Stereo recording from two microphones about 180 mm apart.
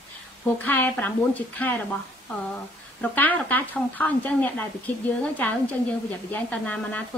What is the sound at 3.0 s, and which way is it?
Speech, 10° left (ahead or behind).